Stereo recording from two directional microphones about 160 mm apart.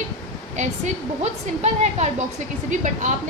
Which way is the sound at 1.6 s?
45° right (ahead or behind).